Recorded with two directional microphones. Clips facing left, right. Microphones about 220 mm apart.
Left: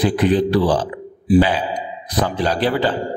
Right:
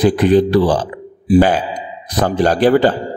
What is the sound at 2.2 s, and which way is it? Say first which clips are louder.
Speech: right 8 dB; 45° right (ahead or behind).